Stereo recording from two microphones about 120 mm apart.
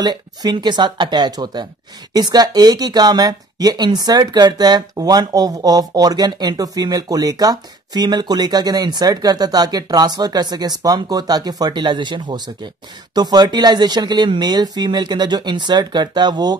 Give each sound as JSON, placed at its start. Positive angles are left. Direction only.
{"t": 0.0, "sound": "speech", "side_deg": -35}